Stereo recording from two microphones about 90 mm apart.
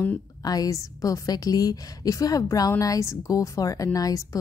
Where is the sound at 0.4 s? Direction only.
45° left (ahead or behind).